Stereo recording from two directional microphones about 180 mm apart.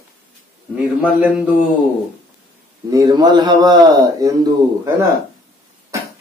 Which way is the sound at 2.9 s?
20° right (ahead or behind).